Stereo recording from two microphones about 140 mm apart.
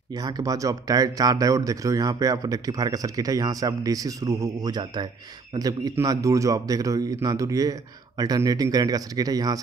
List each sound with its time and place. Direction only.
0.1 s speech: 30° right (ahead or behind)